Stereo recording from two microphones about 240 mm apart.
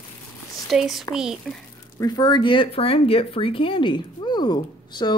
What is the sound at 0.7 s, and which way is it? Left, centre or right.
Speech, centre.